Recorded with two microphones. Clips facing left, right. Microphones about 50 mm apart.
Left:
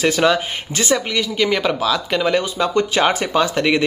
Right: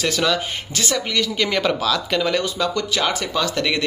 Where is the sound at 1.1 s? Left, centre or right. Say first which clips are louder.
Left 3 dB; centre.